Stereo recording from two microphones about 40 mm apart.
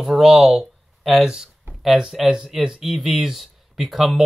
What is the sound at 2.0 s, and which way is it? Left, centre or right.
Speech, centre.